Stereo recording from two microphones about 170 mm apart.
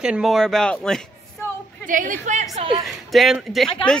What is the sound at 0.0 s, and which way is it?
Speech, 5° right (ahead or behind).